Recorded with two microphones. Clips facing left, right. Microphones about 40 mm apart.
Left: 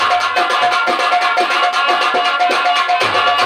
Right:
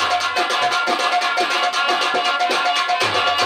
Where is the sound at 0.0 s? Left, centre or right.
Left.